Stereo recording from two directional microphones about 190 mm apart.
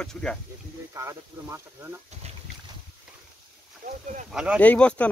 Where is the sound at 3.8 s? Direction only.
45° right (ahead or behind).